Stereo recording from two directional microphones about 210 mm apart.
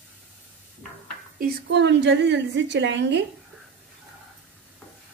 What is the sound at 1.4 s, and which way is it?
A woman's voice, 55° right (ahead or behind).